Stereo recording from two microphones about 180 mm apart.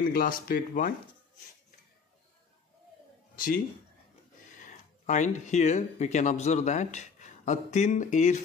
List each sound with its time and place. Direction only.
0.0 s speech: 50° left (ahead or behind)
3.3 s speech: 50° left (ahead or behind)